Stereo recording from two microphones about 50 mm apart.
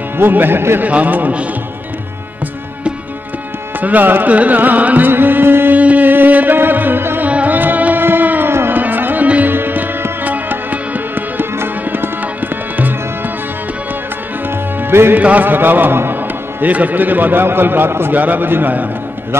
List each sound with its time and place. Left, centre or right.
0.2 s a man's voice: right
0.8 s music: right
3.8 s music: right
4.3 s carnatic music: right
5.8 s music: right
7.2 s carnatic music: right
8.5 s music: right
11.5 s music: right
14.8 s music: right
15.1 s music: right
16.6 s a man's voice: right
18.1 s music: right